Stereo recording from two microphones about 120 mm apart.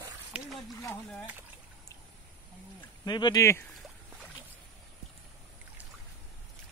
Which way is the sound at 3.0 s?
35° left (ahead or behind).